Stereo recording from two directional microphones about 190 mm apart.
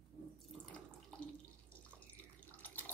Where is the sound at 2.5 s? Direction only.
10° left (ahead or behind).